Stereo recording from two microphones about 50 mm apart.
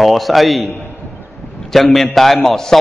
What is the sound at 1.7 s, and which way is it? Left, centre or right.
A man's voice, centre.